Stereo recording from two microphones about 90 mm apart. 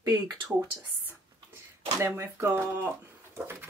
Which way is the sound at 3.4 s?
25° right (ahead or behind).